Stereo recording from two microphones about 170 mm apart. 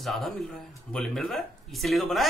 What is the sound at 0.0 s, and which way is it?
A man's voice, centre (ahead or behind).